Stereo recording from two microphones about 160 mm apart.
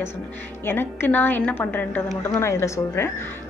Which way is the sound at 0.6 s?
15° left (ahead or behind).